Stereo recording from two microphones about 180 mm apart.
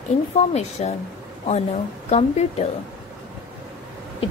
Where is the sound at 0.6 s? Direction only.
35° left (ahead or behind).